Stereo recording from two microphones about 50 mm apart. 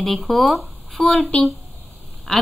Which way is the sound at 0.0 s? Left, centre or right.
Centre.